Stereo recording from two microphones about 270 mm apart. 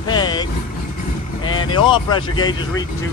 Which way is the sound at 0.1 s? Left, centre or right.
Centre.